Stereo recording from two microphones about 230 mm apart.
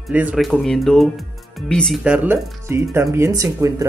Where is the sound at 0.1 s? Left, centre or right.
Centre.